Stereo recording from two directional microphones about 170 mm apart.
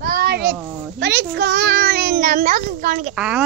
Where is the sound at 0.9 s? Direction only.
80° right; by 3.1 s 55° right (ahead or behind).